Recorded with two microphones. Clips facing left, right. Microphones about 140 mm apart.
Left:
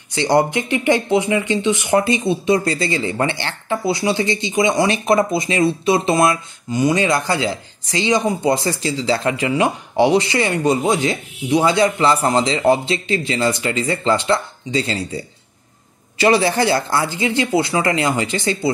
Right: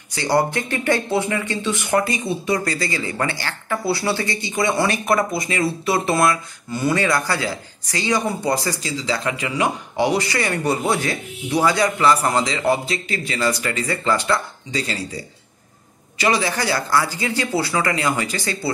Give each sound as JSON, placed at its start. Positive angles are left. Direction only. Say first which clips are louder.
{"t": 0.1, "sound": "speech", "louder": "left 3 dB", "side_deg": 20}